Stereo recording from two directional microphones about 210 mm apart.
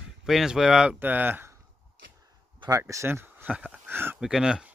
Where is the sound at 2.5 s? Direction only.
15° right (ahead or behind).